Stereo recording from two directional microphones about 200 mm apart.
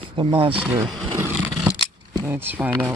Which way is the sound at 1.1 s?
10° right (ahead or behind).